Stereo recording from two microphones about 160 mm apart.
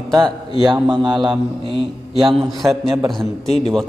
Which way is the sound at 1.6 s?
35° right (ahead or behind).